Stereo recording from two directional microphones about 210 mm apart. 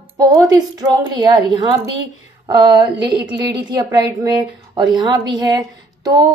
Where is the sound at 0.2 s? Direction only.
20° right (ahead or behind).